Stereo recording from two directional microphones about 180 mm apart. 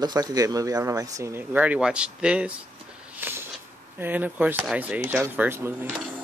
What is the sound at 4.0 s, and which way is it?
Speech, 10° right (ahead or behind).